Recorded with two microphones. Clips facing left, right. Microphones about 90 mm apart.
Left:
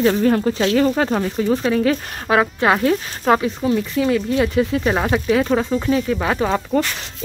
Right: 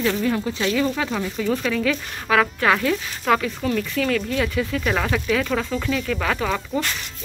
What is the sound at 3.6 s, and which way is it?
Speech, 20° left (ahead or behind).